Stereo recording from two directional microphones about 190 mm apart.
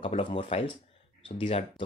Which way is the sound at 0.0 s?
25° left (ahead or behind).